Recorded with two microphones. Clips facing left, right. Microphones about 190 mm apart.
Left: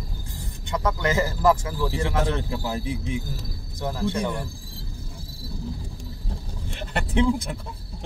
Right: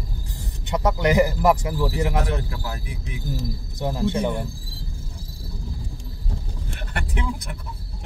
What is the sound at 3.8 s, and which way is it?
Speech, 20° right (ahead or behind).